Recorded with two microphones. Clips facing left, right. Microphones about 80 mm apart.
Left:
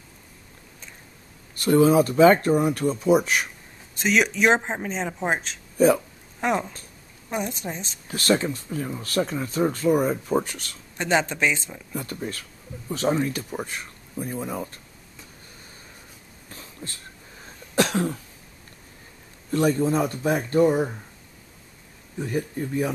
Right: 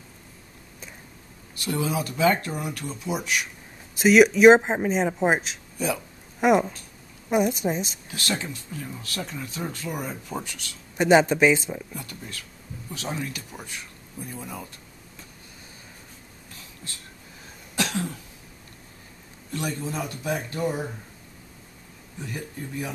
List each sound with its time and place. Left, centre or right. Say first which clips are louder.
1.5 s speech: left 10 dB; left
3.9 s speech: right 6 dB; centre
8.1 s speech: left 10 dB; left
11.0 s speech: right 5 dB; centre
11.9 s speech: left 7 dB; left
17.7 s cough: left 6 dB; left
19.5 s speech: left 9 dB; left
22.2 s speech: left 8 dB; left